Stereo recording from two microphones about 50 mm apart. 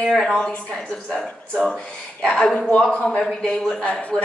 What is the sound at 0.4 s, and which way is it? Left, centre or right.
A woman's voice, centre.